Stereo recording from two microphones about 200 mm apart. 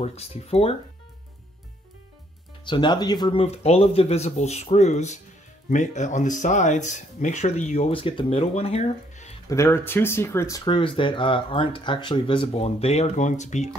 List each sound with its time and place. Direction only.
0.0 s speech: 30° left (ahead or behind)
2.6 s speech: 20° left (ahead or behind)
9.5 s speech: 15° left (ahead or behind); by 13.7 s 35° left (ahead or behind)